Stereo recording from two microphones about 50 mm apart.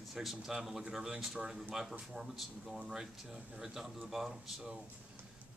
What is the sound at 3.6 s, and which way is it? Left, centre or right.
A man's voice, centre.